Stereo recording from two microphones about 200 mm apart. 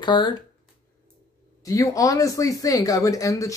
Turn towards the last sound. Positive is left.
turn(degrees=15)  # may be behind; listen again after turning